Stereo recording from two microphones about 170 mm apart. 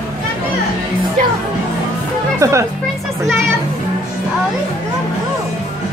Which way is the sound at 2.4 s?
20° right (ahead or behind).